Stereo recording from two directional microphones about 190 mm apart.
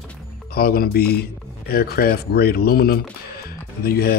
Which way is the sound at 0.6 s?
50° left (ahead or behind).